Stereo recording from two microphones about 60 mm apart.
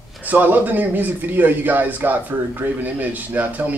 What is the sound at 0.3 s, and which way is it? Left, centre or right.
A man's voice, right.